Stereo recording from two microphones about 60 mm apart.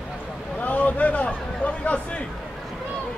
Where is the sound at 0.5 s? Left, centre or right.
Left.